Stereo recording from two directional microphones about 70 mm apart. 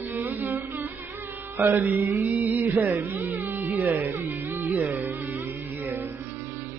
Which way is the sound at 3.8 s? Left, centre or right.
Right.